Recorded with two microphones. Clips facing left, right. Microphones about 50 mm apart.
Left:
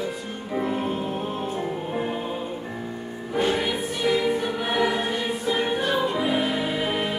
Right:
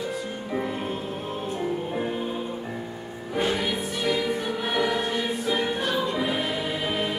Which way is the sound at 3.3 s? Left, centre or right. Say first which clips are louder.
Left 2 dB; centre.